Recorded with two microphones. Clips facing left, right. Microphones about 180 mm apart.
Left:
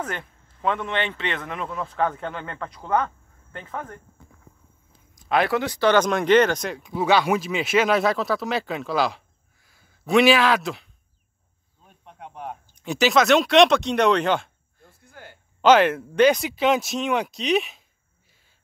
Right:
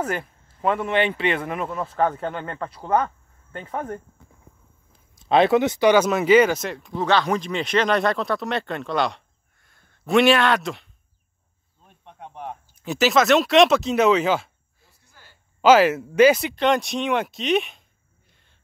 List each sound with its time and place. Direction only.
0.0 s speech: 5° right (ahead or behind)
3.6 s speech: 35° right (ahead or behind)
5.2 s speech: 25° right (ahead or behind); by 14.9 s 5° right (ahead or behind)
14.9 s a sound: 55° left (ahead or behind)
15.6 s speech: 5° right (ahead or behind)
18.3 s a sound: 5° left (ahead or behind)